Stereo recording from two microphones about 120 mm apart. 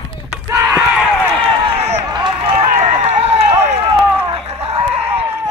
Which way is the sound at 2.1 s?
40° right (ahead or behind).